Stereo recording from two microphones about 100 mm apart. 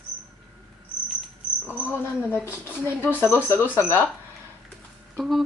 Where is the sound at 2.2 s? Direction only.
25° left (ahead or behind).